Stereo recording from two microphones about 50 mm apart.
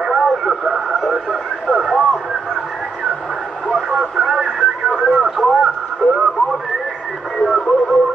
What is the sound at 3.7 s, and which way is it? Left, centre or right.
Radio, centre.